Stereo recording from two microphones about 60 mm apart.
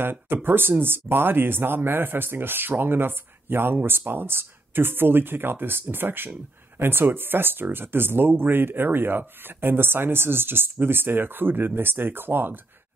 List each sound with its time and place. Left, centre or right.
0.0 s speech: right